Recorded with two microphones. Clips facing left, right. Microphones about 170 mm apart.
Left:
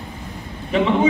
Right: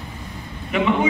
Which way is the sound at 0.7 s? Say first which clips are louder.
Left 2 dB; 30° left (ahead or behind).